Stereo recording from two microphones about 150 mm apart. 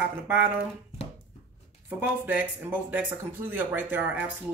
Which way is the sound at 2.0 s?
10° right (ahead or behind).